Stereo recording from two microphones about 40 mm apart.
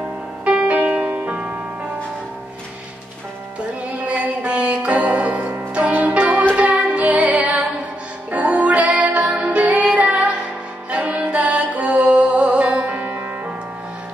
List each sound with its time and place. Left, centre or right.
0.7 s music: right
4.1 s music: right